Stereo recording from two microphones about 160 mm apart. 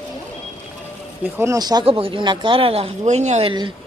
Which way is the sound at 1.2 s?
15° right (ahead or behind).